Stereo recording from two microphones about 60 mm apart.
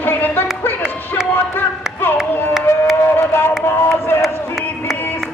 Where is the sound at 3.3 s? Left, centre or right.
Left.